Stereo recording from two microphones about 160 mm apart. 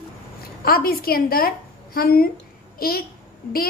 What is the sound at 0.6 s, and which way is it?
A woman's voice, 70° left (ahead or behind).